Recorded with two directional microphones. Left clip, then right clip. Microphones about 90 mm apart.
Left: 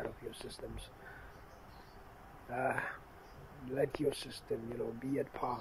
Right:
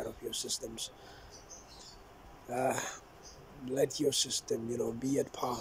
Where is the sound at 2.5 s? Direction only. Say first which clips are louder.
Right 3 dB; 50° right (ahead or behind).